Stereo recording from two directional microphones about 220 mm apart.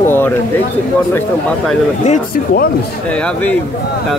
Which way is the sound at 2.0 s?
40° left (ahead or behind).